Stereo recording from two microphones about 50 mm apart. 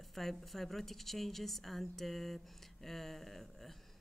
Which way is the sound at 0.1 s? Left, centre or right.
Centre.